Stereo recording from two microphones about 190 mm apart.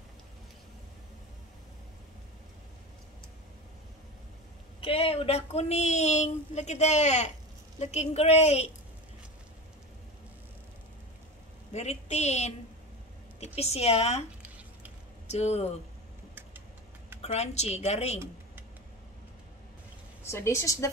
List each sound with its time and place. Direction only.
4.7 s speech: 30° left (ahead or behind)
11.7 s speech: 35° left (ahead or behind)
13.6 s speech: 35° left (ahead or behind)
15.2 s speech: 35° left (ahead or behind)
17.2 s speech: 35° left (ahead or behind)
20.2 s a woman's voice: 15° left (ahead or behind)